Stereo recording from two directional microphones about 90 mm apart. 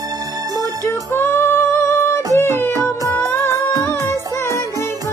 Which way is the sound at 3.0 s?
30° left (ahead or behind).